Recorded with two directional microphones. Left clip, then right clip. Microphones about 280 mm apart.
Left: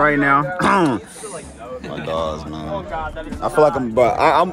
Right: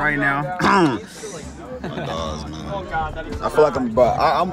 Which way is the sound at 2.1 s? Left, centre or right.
Centre.